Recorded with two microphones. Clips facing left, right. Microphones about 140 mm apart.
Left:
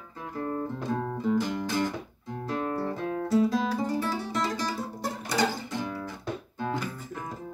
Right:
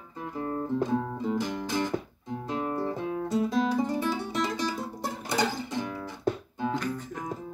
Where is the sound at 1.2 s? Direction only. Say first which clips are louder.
Left 3 dB; 20° right (ahead or behind).